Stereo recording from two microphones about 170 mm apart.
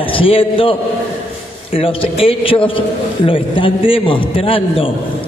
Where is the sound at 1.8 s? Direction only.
30° left (ahead or behind).